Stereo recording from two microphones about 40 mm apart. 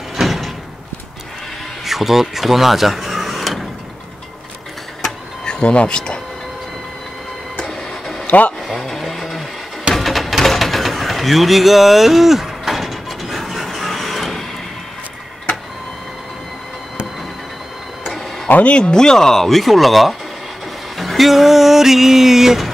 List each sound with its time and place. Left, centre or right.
0.1 s door: centre
1.9 s speech: centre
5.4 s speech: left
7.6 s printer: centre
8.3 s speech: left
8.8 s a sound: centre
9.9 s music: centre
10.4 s a sound: centre
13.7 s printer: centre
18.6 s speech: left; by 20.2 s centre
21.0 s a sound: centre